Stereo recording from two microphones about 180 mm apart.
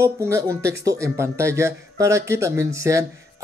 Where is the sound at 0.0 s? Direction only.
15° right (ahead or behind).